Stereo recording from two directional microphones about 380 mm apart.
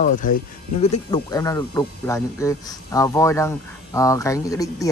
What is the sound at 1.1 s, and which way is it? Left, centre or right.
Speech, centre.